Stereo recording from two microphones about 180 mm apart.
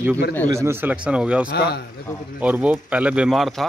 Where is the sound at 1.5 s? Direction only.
65° left (ahead or behind).